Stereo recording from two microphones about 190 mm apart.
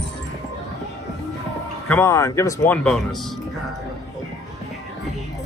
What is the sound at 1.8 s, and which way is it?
Speech, 10° left (ahead or behind).